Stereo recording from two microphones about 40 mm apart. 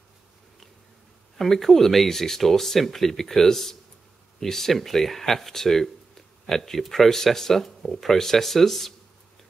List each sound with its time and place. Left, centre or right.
1.4 s speech: centre